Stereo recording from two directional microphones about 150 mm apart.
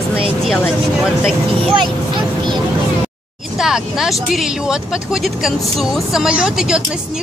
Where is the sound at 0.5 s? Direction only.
5° left (ahead or behind).